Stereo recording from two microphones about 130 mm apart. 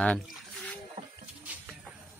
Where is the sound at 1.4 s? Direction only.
15° right (ahead or behind).